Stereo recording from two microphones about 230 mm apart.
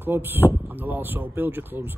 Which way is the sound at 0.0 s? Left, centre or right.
Centre.